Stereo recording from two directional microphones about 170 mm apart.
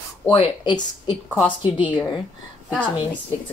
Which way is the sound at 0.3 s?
30° left (ahead or behind).